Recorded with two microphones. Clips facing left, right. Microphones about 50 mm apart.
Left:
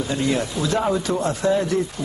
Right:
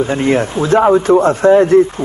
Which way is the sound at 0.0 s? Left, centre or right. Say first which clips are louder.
Right 8 dB; right.